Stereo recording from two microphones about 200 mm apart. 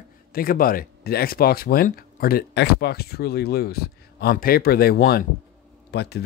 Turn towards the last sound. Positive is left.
turn(degrees=55)  # may be behind; listen again after turning